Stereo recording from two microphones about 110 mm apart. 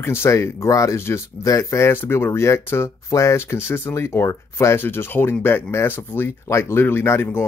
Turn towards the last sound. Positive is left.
turn(degrees=20)  # may be behind; listen again after turning